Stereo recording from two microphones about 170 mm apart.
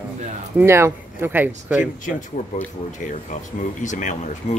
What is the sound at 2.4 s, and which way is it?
Speech, 45° left (ahead or behind).